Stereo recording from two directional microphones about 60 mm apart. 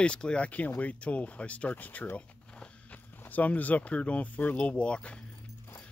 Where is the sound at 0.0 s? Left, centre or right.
Centre.